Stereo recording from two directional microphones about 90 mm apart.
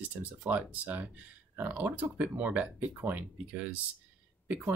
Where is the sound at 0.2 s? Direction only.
15° right (ahead or behind).